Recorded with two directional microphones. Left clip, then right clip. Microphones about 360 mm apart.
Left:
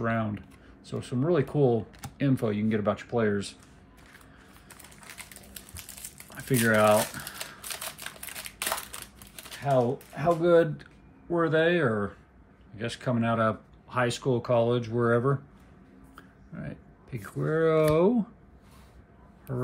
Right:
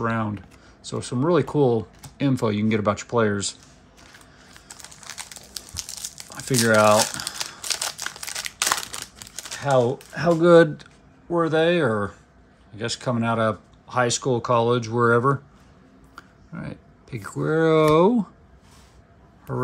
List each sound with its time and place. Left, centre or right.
0.0 s speech: centre
5.5 s crumpling: centre
8.5 s crumpling: centre
9.8 s speech: right
10.8 s speech: centre